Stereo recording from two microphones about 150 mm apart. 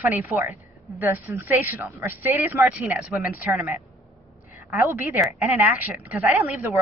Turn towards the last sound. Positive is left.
turn(degrees=-10)  # may be behind; listen again after turning